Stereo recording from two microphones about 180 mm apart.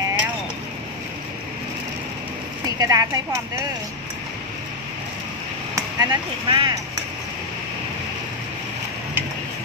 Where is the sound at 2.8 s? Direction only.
20° right (ahead or behind).